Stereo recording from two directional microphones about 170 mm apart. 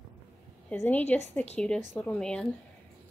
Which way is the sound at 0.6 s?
10° left (ahead or behind).